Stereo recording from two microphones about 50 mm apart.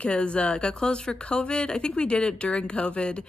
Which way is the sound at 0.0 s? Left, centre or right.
Left.